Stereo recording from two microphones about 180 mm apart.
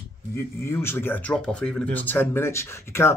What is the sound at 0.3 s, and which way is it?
Speech, 15° left (ahead or behind).